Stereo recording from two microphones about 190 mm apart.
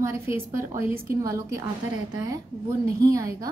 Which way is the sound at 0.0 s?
15° right (ahead or behind).